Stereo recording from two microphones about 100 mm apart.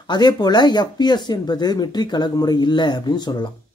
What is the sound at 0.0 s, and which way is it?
Speech, 45° left (ahead or behind).